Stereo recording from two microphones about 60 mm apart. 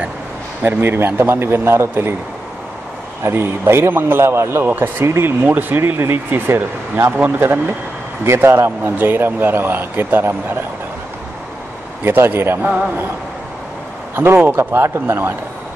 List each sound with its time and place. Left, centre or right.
0.7 s speech: right
3.3 s a man's voice: right
4.6 s speech: right
5.0 s a man's voice: right
5.4 s a man's voice: right
12.0 s speech: right
14.1 s speech: right